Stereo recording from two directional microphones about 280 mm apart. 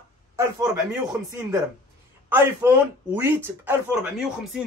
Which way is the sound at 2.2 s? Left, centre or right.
Centre.